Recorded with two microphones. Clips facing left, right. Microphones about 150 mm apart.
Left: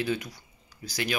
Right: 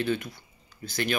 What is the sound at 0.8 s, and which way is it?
Speech, 55° right (ahead or behind).